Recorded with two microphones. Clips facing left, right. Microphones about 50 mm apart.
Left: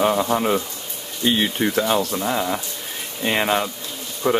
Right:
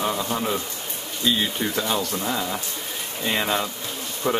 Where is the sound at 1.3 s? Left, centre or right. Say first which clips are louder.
Left 3 dB; left.